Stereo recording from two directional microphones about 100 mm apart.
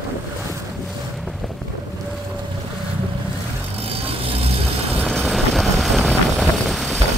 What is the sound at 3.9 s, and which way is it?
Music, 75° right (ahead or behind).